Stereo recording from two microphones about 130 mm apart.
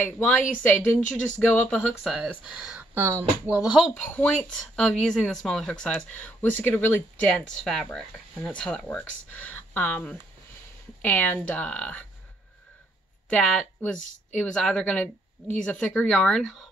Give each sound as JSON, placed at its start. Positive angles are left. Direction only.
{"t": 0.0, "sound": "a woman's voice", "side_deg": 10}
{"t": 1.7, "sound": "speech", "side_deg": 0}
{"t": 3.4, "sound": "speech", "side_deg": -10}
{"t": 3.9, "sound": "a woman's voice", "side_deg": 10}
{"t": 13.3, "sound": "a woman's voice", "side_deg": 5}